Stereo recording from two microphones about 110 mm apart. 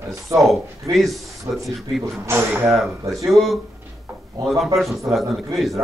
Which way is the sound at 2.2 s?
25° right (ahead or behind).